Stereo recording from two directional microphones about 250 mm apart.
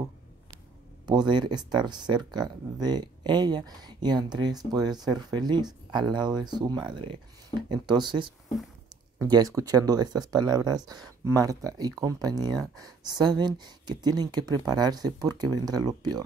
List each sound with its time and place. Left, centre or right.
1.0 s speech: centre